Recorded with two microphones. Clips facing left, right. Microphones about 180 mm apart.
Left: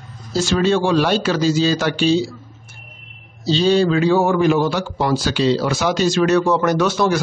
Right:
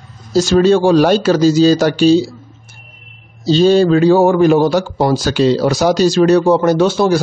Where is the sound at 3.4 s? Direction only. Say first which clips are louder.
Right 5 dB; 45° right (ahead or behind).